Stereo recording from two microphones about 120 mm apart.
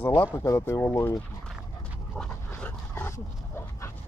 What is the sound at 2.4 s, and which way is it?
Dog, 15° left (ahead or behind).